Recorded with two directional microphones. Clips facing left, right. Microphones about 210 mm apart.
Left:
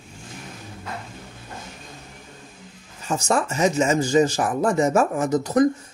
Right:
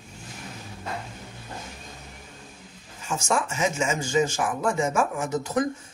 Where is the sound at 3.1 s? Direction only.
35° left (ahead or behind).